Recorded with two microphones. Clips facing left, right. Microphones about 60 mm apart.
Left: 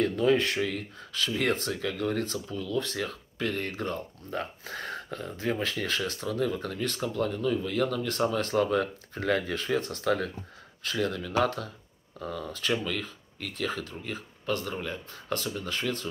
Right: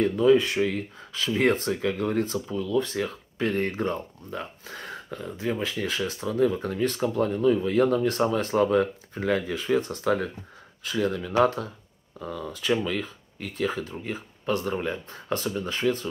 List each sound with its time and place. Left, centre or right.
0.2 s speech: centre; by 4.0 s right
4.3 s speech: centre; by 11.7 s right
12.2 s speech: centre